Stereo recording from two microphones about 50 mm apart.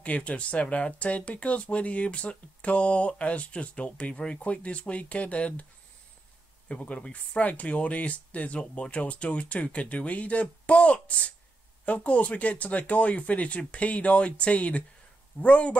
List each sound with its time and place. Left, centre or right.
0.0 s speech: left
6.7 s speech: left